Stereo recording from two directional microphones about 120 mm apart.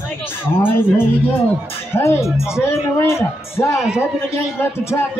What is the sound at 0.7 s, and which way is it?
A man's voice, 20° left (ahead or behind).